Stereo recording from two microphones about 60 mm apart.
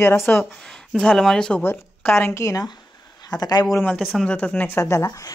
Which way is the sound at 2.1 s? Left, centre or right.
Left.